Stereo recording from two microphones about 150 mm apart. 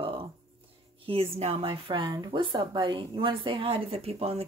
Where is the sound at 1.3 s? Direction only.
40° right (ahead or behind).